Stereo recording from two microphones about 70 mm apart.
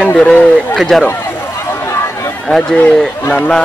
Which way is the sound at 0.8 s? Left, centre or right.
Centre.